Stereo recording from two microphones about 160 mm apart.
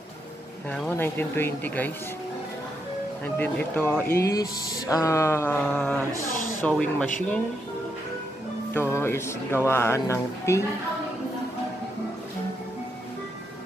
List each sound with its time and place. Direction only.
0.7 s speech: 10° left (ahead or behind)
3.3 s speech: 10° left (ahead or behind)
5.7 s speech: 5° left (ahead or behind)
8.9 s speech: 15° left (ahead or behind)